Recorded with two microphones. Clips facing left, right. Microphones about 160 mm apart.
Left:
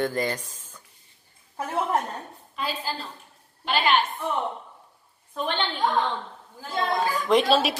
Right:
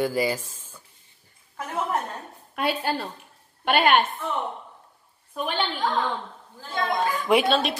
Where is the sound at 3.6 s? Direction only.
55° right (ahead or behind).